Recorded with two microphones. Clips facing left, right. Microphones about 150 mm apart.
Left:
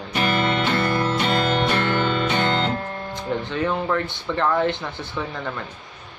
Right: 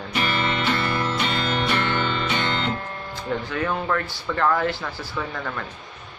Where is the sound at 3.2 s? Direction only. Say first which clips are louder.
Left 1 dB; 20° left (ahead or behind).